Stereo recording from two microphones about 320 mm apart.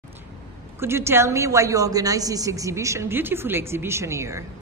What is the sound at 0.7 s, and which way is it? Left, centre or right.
A woman's voice, centre.